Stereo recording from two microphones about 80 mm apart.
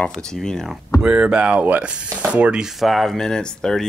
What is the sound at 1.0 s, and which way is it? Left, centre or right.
Speech, centre.